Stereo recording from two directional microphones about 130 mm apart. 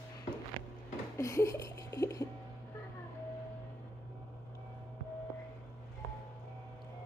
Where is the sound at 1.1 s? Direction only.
25° left (ahead or behind).